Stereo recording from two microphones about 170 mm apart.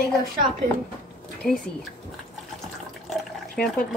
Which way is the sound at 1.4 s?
5° left (ahead or behind).